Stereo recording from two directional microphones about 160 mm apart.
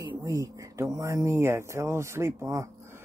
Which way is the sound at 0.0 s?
25° right (ahead or behind).